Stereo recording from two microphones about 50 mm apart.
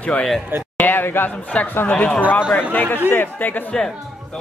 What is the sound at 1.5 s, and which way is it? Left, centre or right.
Speech, left.